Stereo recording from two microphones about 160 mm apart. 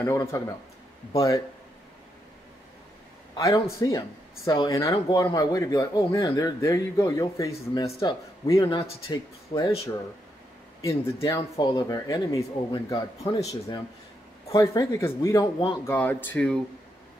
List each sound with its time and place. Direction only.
0.0 s speech: 15° left (ahead or behind)
3.3 s speech: 20° left (ahead or behind)
10.8 s speech: 20° left (ahead or behind)